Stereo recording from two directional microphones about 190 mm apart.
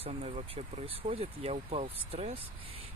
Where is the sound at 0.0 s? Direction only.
30° right (ahead or behind).